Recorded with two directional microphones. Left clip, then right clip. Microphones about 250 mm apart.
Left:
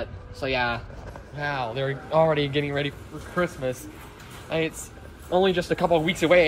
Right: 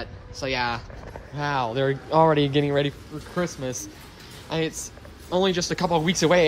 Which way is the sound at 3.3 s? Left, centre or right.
Centre.